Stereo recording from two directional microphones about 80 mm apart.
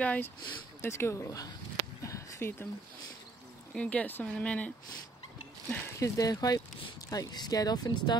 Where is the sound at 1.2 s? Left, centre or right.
Left.